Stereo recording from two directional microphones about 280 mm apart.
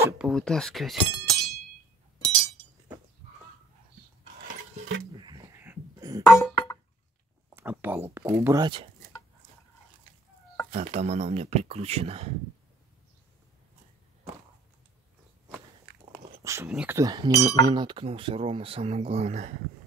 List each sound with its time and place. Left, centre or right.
0.0 s speech: centre
5.1 s a sound: centre
6.2 s chink: centre
7.5 s a sound: centre
8.1 s speech: centre
10.7 s speech: right
16.1 s speech: centre